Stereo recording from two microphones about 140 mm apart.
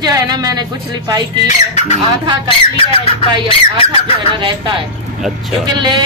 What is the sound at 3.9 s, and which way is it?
Speech, 35° right (ahead or behind).